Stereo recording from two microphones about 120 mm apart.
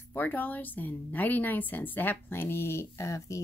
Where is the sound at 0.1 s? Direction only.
15° left (ahead or behind).